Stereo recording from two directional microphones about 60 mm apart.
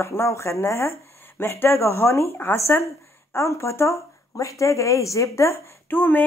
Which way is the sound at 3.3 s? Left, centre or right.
Left.